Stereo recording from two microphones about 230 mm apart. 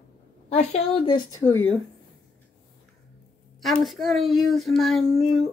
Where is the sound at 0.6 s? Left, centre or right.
Left; by 1.8 s centre.